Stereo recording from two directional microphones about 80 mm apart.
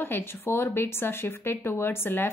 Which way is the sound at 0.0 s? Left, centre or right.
Left.